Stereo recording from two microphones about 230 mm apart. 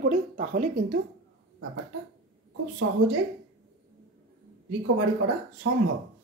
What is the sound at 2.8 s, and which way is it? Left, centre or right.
Speech, right.